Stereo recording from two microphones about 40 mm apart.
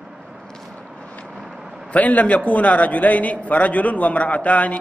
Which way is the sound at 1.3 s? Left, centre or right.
Centre.